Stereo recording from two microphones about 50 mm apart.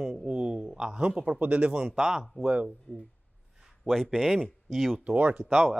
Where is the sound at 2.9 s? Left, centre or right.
Left.